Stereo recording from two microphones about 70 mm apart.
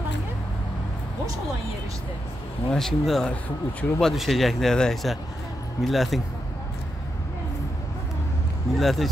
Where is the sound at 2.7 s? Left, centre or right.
Centre.